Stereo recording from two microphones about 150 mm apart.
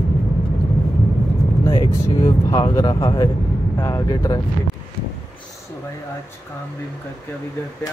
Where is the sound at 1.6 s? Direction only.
25° left (ahead or behind).